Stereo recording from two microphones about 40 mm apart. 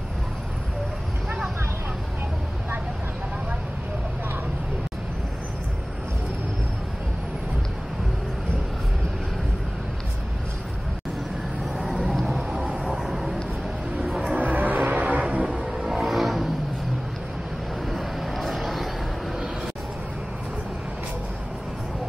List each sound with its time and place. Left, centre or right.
12.2 s a sound: centre
14.3 s music: right
15.6 s music: centre
17.8 s vehicle: centre